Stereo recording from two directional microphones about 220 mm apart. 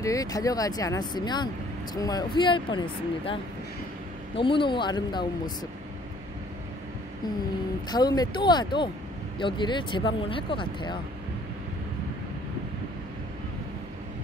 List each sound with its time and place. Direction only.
0.0 s speech: 15° left (ahead or behind)
4.4 s speech: 25° left (ahead or behind)
7.9 s speech: 20° left (ahead or behind)